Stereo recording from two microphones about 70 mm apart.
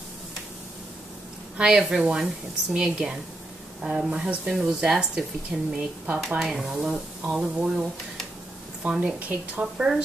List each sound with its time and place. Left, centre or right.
1.6 s a woman's voice: centre
6.4 s a woman's voice: centre
8.8 s a woman's voice: centre